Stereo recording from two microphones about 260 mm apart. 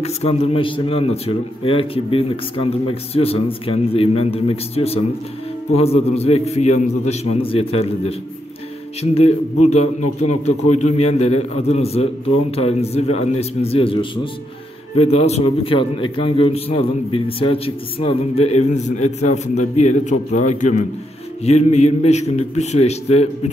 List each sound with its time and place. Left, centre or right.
0.0 s a man's voice: left